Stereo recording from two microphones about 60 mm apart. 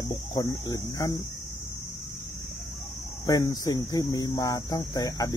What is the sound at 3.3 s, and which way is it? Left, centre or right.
Speech, left.